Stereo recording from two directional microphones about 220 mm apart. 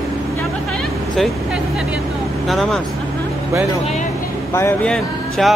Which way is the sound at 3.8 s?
30° left (ahead or behind).